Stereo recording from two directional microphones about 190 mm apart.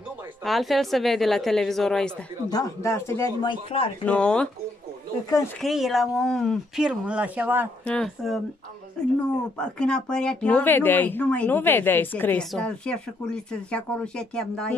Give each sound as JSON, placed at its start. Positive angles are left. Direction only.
{"t": 0.5, "sound": "speech", "side_deg": 0}
{"t": 2.5, "sound": "speech", "side_deg": 15}
{"t": 4.0, "sound": "speech", "side_deg": 5}
{"t": 5.6, "sound": "speech", "side_deg": 0}
{"t": 7.8, "sound": "speech", "side_deg": 5}
{"t": 9.0, "sound": "a sound", "side_deg": 5}
{"t": 9.6, "sound": "speech", "side_deg": 5}